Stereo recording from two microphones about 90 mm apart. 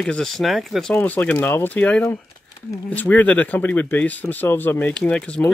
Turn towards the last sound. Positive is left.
turn(degrees=10)  # may be behind; listen again after turning